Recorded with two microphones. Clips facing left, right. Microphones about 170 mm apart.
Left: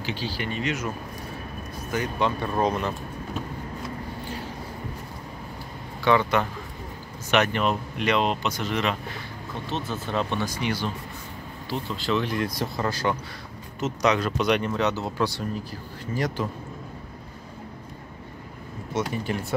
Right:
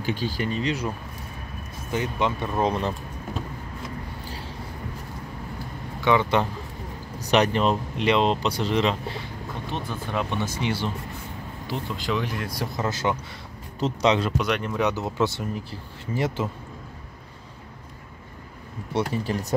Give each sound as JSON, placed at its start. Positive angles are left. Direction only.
{"t": 0.0, "sound": "speech", "side_deg": -50}
{"t": 0.5, "sound": "speech", "side_deg": -35}
{"t": 1.9, "sound": "speech", "side_deg": -20}
{"t": 6.1, "sound": "speech", "side_deg": -20}
{"t": 7.2, "sound": "speech", "side_deg": -35}
{"t": 9.7, "sound": "speech", "side_deg": 25}
{"t": 10.4, "sound": "speech", "side_deg": -25}
{"t": 11.7, "sound": "speech", "side_deg": -15}
{"t": 13.7, "sound": "speech", "side_deg": -30}
{"t": 14.4, "sound": "speech", "side_deg": 0}
{"t": 14.8, "sound": "speech", "side_deg": -15}
{"t": 18.9, "sound": "speech", "side_deg": -35}